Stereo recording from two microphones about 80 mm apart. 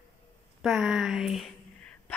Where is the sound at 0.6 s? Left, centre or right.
Centre.